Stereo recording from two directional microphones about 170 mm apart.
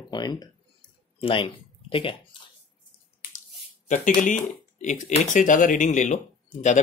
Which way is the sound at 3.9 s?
45° left (ahead or behind).